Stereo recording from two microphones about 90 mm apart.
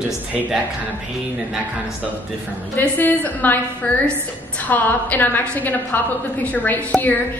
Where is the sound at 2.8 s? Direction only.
20° left (ahead or behind).